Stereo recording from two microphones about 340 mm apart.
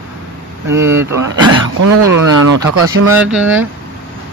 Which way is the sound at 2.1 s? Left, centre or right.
Right.